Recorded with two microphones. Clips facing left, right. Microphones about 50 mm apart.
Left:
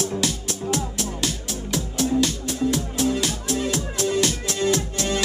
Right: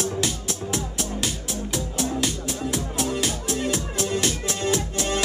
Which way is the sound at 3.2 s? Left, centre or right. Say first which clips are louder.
Left 1 dB; right.